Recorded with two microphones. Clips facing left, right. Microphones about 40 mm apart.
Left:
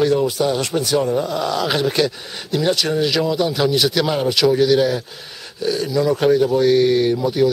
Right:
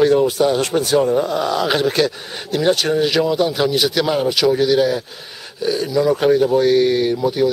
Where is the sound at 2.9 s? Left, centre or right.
Centre.